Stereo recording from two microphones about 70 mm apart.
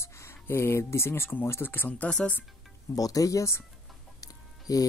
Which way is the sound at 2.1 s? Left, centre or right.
Centre.